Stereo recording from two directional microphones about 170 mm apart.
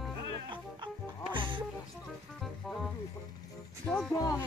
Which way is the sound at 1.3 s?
30° right (ahead or behind).